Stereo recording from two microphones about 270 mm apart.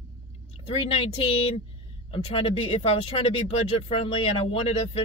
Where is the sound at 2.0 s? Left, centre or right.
Centre.